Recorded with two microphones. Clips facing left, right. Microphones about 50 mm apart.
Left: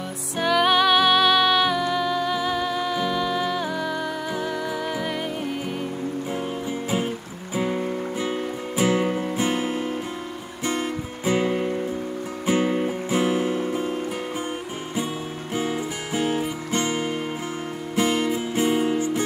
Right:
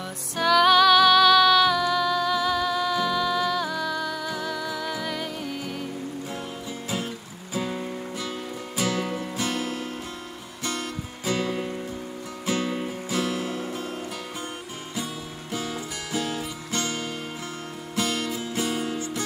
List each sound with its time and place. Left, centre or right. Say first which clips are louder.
0.4 s music: right 1 dB; centre
7.5 s music: left 5 dB; left
15.5 s music: left 5 dB; left